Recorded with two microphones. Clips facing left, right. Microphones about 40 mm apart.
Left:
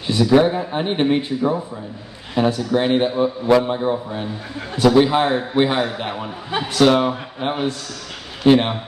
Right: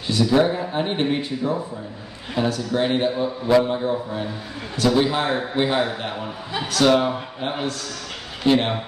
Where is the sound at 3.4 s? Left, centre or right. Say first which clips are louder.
Even; centre.